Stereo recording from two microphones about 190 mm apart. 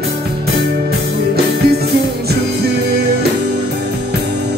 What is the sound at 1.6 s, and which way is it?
Music, 55° right (ahead or behind).